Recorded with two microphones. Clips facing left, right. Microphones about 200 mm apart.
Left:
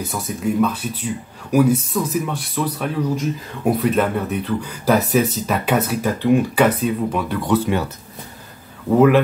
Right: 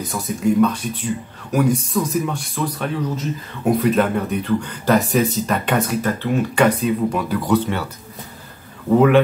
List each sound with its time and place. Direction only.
0.0 s speech: 5° left (ahead or behind)
7.6 s speech: 15° left (ahead or behind)